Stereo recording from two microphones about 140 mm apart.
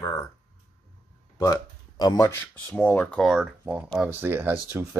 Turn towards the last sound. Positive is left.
turn(degrees=-20)  # may be behind; listen again after turning